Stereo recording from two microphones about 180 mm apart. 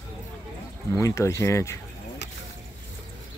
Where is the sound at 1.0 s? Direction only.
15° left (ahead or behind).